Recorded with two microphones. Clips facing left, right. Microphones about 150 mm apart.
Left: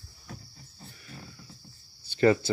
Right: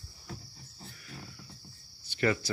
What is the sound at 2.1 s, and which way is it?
Cricket, 30° left (ahead or behind).